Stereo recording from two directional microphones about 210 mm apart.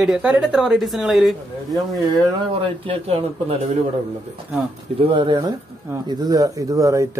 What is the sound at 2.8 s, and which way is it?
Speech, 25° right (ahead or behind).